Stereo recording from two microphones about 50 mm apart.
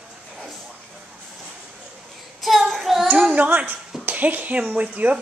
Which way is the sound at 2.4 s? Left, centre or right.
Centre.